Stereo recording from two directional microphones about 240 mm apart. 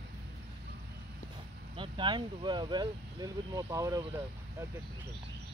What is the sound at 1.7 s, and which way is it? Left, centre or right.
Speech, centre.